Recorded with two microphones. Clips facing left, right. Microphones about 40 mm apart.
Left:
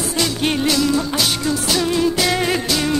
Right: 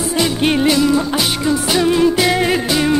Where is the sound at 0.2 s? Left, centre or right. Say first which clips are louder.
Right 4 dB; centre.